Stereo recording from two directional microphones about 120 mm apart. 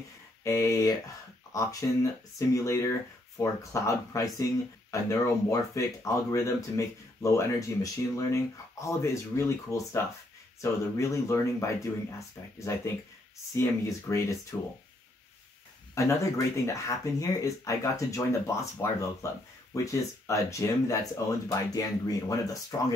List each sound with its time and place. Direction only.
0.4 s speech: 25° left (ahead or behind)
15.9 s speech: 25° left (ahead or behind)